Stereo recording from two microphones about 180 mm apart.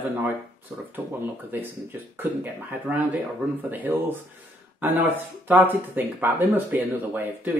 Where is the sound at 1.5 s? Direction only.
10° right (ahead or behind).